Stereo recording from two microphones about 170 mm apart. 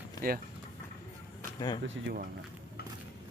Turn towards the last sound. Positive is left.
turn(degrees=-75)  # may be behind; listen again after turning